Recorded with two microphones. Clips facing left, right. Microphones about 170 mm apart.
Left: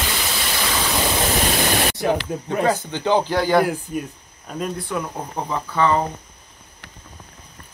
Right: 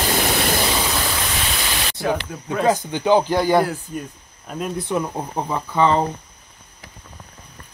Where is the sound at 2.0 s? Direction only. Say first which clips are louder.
Left 2 dB; 20° left (ahead or behind).